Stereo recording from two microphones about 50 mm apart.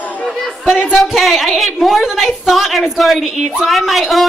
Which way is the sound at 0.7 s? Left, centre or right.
Centre.